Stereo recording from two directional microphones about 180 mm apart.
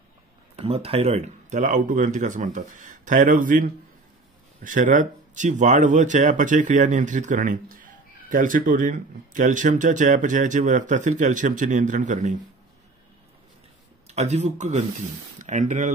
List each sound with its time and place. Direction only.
0.6 s speech: 35° right (ahead or behind)
14.0 s speech: 40° right (ahead or behind)